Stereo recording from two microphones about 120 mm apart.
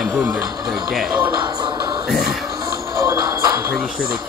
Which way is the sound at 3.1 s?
35° right (ahead or behind).